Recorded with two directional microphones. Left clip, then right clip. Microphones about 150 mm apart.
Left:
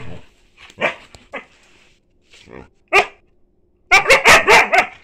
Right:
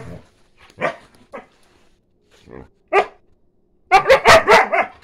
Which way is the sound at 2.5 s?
10° right (ahead or behind).